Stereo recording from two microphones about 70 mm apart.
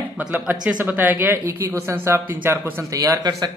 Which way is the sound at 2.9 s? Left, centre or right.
Right.